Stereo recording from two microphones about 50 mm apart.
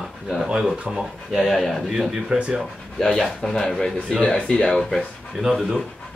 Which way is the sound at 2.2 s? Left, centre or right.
Centre.